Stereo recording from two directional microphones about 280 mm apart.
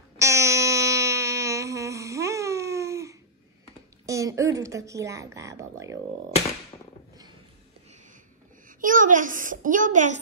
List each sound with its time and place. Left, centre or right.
0.2 s humming: centre
4.0 s speech: centre
8.6 s a child's voice: right